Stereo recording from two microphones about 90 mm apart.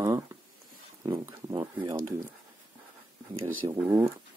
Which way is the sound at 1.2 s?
40° right (ahead or behind).